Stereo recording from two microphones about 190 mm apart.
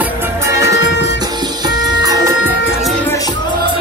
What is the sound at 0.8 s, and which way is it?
Music, 70° left (ahead or behind).